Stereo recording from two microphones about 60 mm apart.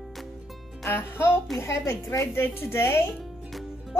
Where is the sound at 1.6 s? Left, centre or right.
Left.